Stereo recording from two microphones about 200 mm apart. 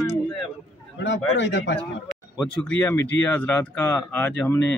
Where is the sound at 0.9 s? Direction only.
65° left (ahead or behind).